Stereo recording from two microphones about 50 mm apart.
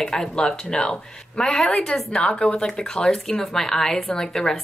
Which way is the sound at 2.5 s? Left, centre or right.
Centre.